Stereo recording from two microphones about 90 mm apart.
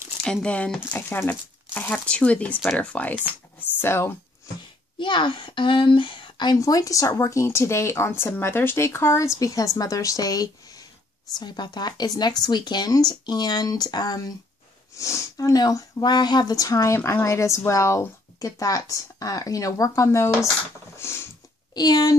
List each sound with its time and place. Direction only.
0.2 s speech: 10° left (ahead or behind)
0.9 s speech: 25° left (ahead or behind)
4.9 s a woman's voice: 65° left (ahead or behind)
6.6 s speech: 40° left (ahead or behind)
11.3 s speech: 55° left (ahead or behind)
15.0 s speech: 35° left (ahead or behind)
21.0 s mechanisms: 30° left (ahead or behind)
21.7 s speech: 45° left (ahead or behind)